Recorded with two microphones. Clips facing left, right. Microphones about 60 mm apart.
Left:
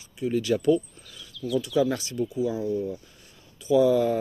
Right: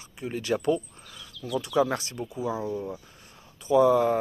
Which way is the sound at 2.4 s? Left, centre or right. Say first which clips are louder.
Left 1 dB; right.